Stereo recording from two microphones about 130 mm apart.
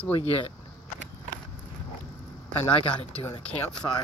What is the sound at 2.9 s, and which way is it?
Speech, 10° left (ahead or behind).